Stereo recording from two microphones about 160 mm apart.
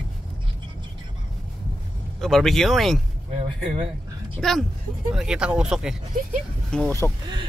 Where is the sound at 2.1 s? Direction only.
Centre (ahead or behind).